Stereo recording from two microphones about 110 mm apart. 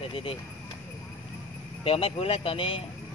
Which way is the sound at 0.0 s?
55° left (ahead or behind).